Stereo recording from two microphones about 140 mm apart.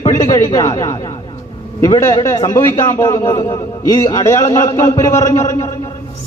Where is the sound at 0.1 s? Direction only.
20° left (ahead or behind).